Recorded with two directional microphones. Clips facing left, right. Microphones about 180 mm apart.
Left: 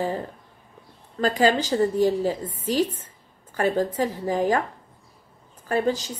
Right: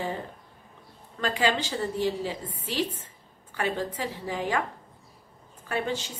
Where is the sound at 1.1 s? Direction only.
40° left (ahead or behind).